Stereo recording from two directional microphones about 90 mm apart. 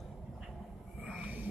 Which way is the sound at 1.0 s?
15° right (ahead or behind).